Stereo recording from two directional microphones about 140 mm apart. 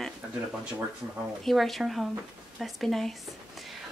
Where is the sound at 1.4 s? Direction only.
Centre (ahead or behind).